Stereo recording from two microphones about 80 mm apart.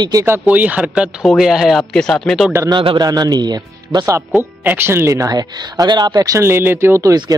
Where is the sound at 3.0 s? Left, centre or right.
Right.